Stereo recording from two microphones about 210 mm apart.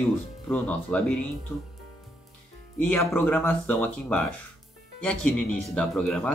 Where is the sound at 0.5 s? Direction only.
10° left (ahead or behind).